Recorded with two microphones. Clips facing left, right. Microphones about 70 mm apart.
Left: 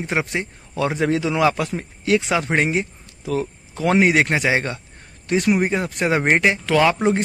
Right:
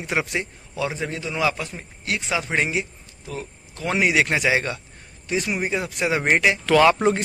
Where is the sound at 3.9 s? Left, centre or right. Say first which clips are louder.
Left 4 dB; left.